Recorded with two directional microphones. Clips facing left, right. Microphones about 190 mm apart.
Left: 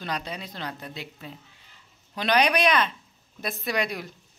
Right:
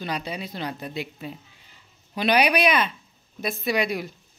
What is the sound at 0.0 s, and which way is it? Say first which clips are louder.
A woman's voice: right 3 dB; 5° right (ahead or behind).